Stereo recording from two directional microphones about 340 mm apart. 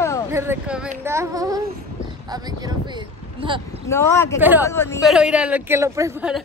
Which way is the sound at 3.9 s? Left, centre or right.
Centre.